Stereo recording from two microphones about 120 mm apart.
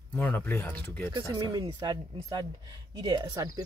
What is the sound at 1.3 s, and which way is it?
Speech, 35° right (ahead or behind).